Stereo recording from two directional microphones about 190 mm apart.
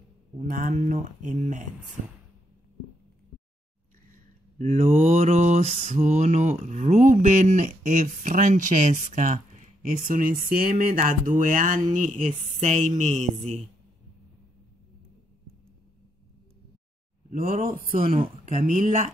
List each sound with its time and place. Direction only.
0.4 s mantra: 45° right (ahead or behind)
4.6 s mantra: 40° right (ahead or behind)
10.0 s speech: 45° right (ahead or behind)
17.3 s speech: 40° right (ahead or behind)
18.2 s mantra: 35° right (ahead or behind)